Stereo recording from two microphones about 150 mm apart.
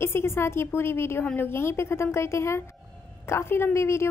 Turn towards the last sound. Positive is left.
turn(degrees=20)  # may be behind; listen again after turning